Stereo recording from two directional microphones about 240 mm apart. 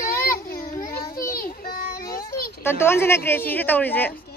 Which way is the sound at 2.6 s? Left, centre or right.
Centre.